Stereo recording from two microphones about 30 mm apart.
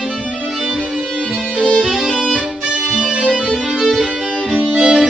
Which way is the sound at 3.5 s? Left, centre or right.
Centre.